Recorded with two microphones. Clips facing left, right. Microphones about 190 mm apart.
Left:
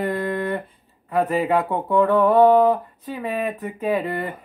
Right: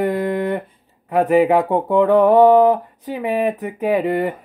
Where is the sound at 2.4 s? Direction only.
20° right (ahead or behind).